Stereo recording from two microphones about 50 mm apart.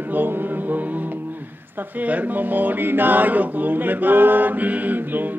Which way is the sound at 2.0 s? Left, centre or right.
Right.